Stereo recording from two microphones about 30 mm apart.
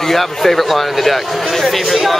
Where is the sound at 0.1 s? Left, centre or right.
Centre.